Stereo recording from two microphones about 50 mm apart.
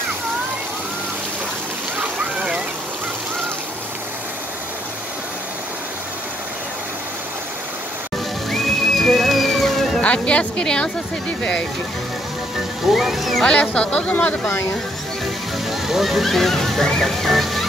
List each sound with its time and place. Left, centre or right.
8.5 s music: centre
10.0 s a woman's voice: left
12.8 s speech: centre
13.4 s a woman's voice: left
14.1 s speech: left
15.7 s speech: centre